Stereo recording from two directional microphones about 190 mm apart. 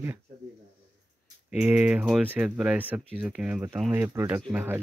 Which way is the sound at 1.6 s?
5° right (ahead or behind).